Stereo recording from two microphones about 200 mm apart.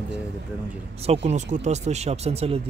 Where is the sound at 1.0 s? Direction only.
30° right (ahead or behind).